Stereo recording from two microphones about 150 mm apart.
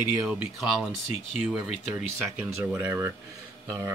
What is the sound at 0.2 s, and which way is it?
Speech, 10° right (ahead or behind).